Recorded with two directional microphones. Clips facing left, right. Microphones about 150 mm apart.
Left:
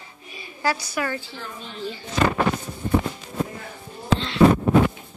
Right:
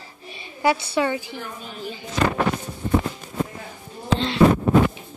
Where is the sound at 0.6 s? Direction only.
25° right (ahead or behind).